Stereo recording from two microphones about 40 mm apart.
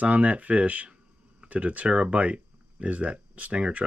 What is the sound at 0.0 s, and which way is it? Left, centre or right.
Speech, right.